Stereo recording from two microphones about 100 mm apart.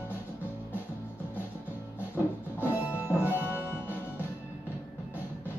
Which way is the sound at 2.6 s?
20° right (ahead or behind).